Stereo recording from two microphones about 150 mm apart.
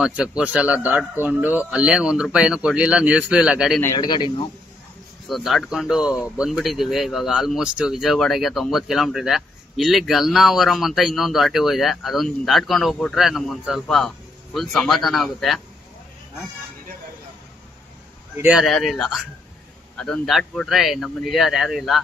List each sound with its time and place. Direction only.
0.0 s speech: 5° right (ahead or behind)
3.8 s a man's voice: 25° left (ahead or behind)
5.3 s speech: centre (ahead or behind)
18.4 s speech: 5° right (ahead or behind)